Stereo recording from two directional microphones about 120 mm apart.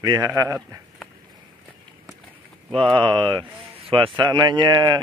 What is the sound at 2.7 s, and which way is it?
Speech, 45° right (ahead or behind).